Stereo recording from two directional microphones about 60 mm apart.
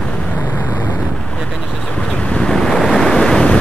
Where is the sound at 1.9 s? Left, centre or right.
Centre.